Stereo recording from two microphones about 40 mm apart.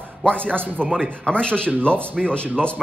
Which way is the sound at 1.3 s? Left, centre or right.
Left.